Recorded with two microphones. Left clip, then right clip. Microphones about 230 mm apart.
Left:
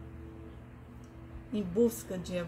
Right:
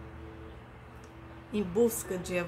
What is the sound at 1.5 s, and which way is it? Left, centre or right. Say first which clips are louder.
Speech: right 2 dB; centre.